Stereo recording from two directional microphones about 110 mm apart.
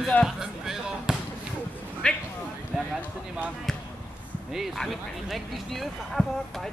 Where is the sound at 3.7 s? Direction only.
5° left (ahead or behind).